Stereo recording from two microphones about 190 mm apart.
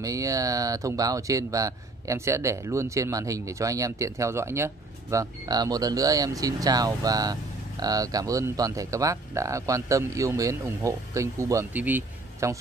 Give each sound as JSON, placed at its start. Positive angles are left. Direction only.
{"t": 0.0, "sound": "speech", "side_deg": -15}